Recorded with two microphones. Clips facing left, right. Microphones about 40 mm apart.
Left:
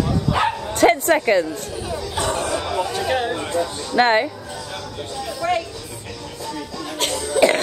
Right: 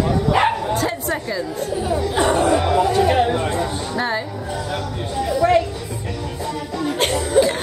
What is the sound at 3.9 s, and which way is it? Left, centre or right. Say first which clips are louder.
Speech: left 8 dB; left.